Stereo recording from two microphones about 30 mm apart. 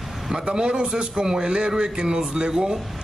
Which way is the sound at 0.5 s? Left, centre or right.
Right.